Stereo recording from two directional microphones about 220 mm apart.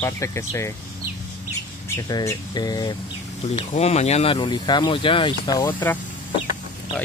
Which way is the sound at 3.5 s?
30° left (ahead or behind).